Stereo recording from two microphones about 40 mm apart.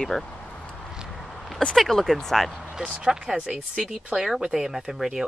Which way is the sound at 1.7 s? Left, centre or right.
Centre.